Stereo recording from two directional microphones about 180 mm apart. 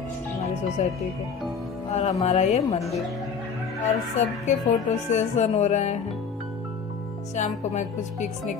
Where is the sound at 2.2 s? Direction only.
35° left (ahead or behind).